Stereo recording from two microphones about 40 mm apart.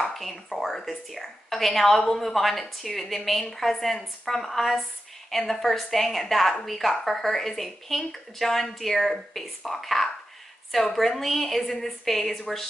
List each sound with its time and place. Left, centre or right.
0.0 s speech: centre